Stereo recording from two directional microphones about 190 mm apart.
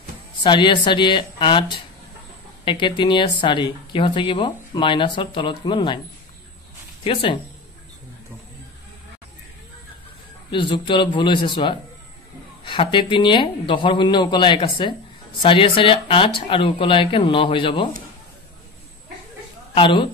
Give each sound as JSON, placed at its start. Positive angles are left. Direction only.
{"t": 0.4, "sound": "speech", "side_deg": 25}
{"t": 7.1, "sound": "speech", "side_deg": 25}
{"t": 10.5, "sound": "speech", "side_deg": 25}
{"t": 19.7, "sound": "speech", "side_deg": 25}